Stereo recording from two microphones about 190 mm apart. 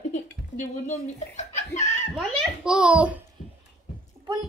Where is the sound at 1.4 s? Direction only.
40° left (ahead or behind).